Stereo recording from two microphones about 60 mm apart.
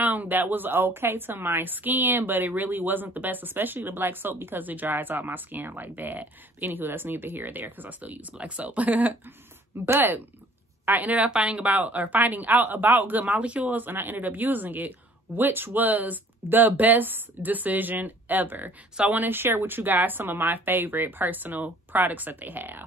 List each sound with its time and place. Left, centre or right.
0.0 s a woman's voice: right
11.2 s a woman's voice: centre; by 22.8 s right